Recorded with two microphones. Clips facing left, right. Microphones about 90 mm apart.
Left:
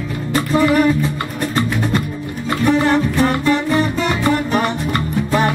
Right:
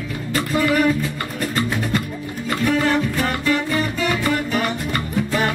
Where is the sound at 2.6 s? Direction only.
25° left (ahead or behind).